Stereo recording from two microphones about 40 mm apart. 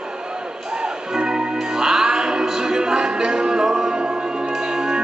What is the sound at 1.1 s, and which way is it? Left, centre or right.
Music, centre.